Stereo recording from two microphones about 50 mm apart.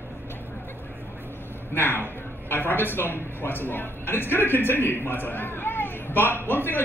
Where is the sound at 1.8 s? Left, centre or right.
Left.